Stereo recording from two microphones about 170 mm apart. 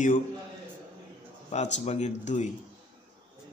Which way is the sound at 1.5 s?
40° left (ahead or behind).